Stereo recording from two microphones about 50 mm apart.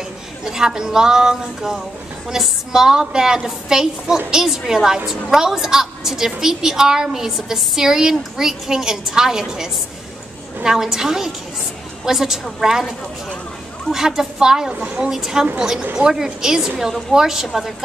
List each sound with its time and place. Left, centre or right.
0.5 s a woman's voice: centre
13.9 s a woman's voice: centre
15.8 s speech: right
16.1 s a woman's voice: centre